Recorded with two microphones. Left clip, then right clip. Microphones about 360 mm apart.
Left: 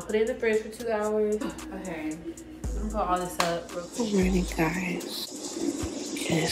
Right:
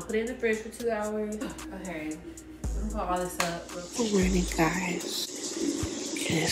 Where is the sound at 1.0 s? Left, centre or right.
Centre.